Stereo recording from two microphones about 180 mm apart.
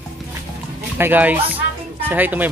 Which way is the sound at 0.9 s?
10° right (ahead or behind).